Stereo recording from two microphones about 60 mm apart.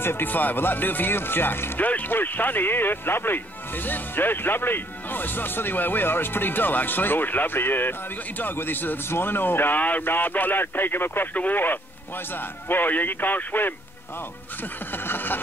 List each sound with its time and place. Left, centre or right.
0.0 s speech: left
15.0 s speech: left